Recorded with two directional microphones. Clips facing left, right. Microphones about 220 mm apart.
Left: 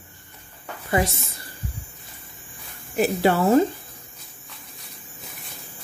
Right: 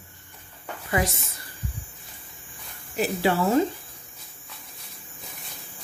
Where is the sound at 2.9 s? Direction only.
45° left (ahead or behind).